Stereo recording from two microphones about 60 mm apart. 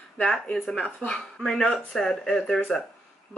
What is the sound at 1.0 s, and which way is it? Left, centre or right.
Speech, centre.